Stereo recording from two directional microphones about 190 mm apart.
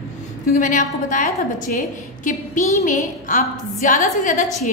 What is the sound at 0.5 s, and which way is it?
Speech, 40° left (ahead or behind).